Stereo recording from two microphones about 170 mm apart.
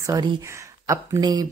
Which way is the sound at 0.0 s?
25° right (ahead or behind).